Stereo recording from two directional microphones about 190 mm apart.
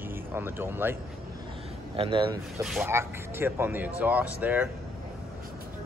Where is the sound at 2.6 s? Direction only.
Centre (ahead or behind).